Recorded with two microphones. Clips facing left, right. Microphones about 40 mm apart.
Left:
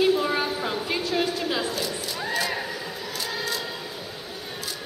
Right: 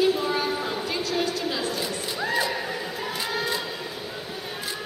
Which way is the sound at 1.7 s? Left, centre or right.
Centre.